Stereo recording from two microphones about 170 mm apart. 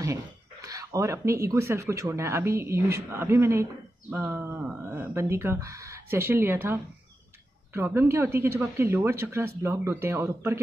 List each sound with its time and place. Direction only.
0.0 s speech: 20° right (ahead or behind)